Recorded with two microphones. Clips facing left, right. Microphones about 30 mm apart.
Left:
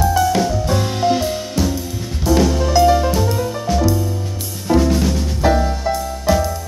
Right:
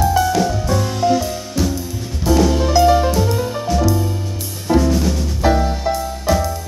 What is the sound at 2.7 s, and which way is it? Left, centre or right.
Music, centre.